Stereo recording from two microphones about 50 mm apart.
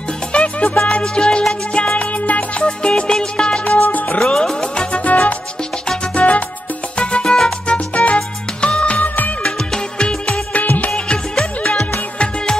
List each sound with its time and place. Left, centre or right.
0.3 s music: left
4.2 s music: centre
5.0 s music: left
9.9 s music: centre
10.6 s music: left